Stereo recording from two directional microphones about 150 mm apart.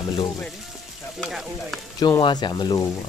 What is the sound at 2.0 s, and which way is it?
Speech, 25° left (ahead or behind).